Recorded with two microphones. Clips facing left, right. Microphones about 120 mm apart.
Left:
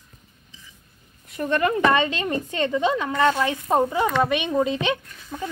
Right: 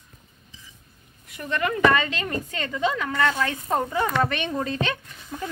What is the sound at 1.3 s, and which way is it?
Speech, 30° left (ahead or behind).